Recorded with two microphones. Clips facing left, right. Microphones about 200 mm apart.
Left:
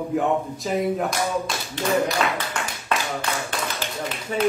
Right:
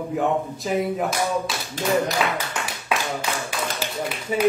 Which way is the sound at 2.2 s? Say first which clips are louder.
Even; 5° right (ahead or behind).